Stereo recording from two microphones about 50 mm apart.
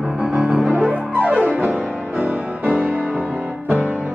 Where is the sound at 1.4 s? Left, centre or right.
Right.